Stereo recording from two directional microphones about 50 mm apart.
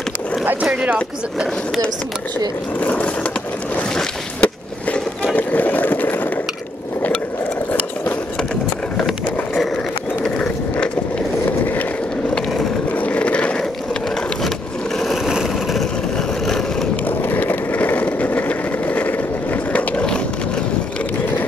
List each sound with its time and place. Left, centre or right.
2.8 s a sound: left
4.4 s skateboard: left
11.6 s skateboard: left
12.9 s skateboard: left
15.2 s vehicle: centre
16.2 s vehicle: centre
16.9 s vehicle: left